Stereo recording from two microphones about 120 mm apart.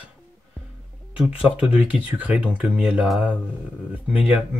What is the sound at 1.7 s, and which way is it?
Speech, 10° right (ahead or behind).